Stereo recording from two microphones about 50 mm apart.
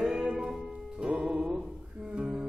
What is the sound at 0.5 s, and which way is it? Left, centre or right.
Music, centre.